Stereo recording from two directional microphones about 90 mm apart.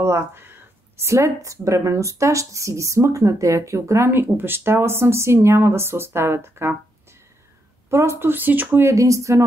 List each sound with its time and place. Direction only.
0.0 s speech: 30° right (ahead or behind)
7.9 s speech: 30° right (ahead or behind)
8.8 s speech: 35° right (ahead or behind)